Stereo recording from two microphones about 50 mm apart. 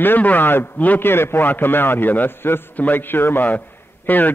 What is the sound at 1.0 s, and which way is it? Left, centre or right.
A man's voice, left.